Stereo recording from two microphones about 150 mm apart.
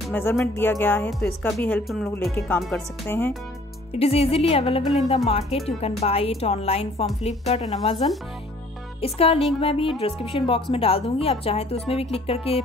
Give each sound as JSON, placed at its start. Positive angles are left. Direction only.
{"t": 0.1, "sound": "speech", "side_deg": 15}
{"t": 1.9, "sound": "speech", "side_deg": 0}
{"t": 2.3, "sound": "speech", "side_deg": 10}
{"t": 4.0, "sound": "speech", "side_deg": 40}